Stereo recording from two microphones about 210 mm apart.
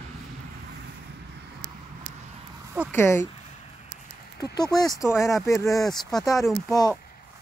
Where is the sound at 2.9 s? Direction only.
10° left (ahead or behind).